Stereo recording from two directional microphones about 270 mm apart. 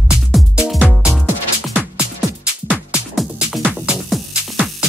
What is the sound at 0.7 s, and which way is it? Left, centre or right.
Music, centre.